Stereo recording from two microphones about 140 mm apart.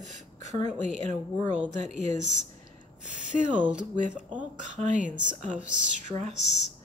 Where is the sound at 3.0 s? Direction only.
70° right (ahead or behind).